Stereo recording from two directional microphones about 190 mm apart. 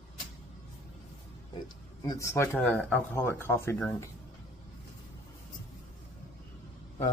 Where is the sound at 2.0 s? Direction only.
20° left (ahead or behind).